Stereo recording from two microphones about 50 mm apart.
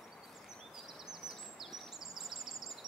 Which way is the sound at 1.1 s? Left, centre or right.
Centre.